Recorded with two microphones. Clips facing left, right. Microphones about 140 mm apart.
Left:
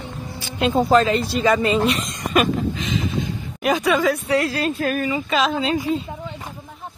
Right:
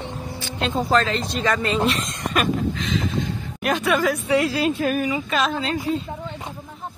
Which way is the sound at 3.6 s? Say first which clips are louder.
Left 2 dB; centre (ahead or behind).